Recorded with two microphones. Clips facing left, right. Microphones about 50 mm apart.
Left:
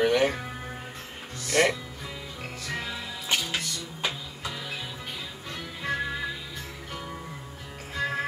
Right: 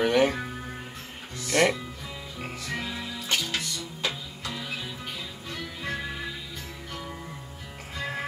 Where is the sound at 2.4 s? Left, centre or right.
Centre.